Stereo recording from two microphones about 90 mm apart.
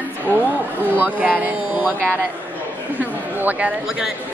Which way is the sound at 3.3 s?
20° right (ahead or behind).